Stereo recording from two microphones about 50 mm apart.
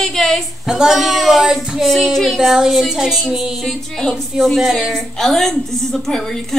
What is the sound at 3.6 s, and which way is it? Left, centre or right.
A woman's voice, centre.